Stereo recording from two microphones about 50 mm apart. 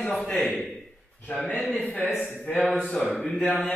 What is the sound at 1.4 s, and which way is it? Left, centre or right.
Speech, left.